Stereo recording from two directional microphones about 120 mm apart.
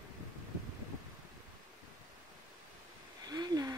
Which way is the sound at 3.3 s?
35° right (ahead or behind).